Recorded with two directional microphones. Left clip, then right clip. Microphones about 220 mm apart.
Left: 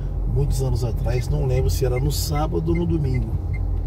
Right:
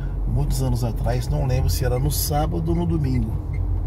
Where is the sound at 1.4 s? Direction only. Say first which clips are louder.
Left 4 dB; 25° right (ahead or behind).